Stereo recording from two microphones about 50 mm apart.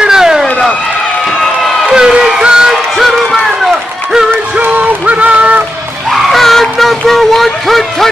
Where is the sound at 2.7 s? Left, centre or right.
Centre.